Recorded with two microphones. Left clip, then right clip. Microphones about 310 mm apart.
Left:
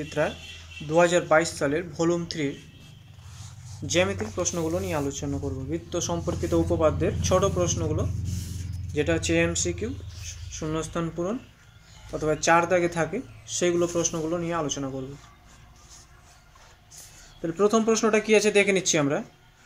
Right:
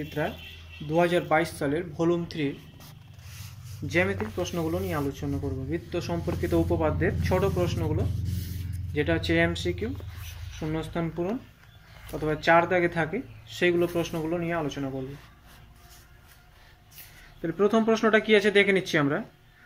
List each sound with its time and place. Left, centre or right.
0.8 s speech: centre
3.9 s speech: centre
17.4 s speech: centre